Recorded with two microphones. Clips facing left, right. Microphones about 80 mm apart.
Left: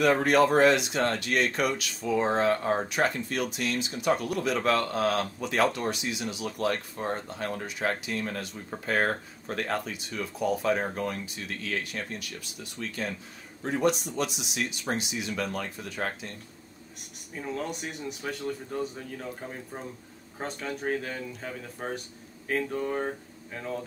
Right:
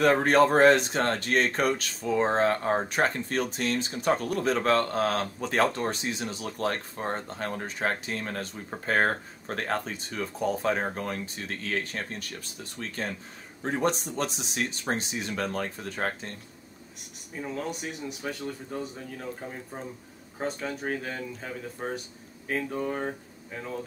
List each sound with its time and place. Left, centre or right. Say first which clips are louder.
0.0 s speech: right 1 dB; right
17.4 s speech: even; centre
20.3 s speech: right 2 dB; centre